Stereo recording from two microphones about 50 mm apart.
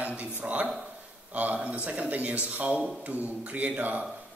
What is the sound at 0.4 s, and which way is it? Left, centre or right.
Speech, right.